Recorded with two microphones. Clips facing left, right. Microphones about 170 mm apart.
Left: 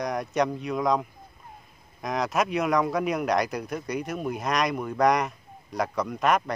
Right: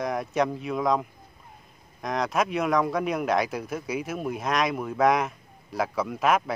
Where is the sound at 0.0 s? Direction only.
Centre (ahead or behind).